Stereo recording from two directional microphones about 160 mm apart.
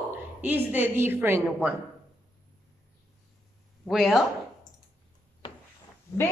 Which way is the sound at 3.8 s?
Centre (ahead or behind).